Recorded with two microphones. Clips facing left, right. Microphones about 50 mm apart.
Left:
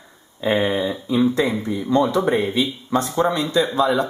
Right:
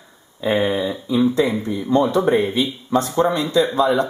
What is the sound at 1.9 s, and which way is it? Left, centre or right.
Speech, right.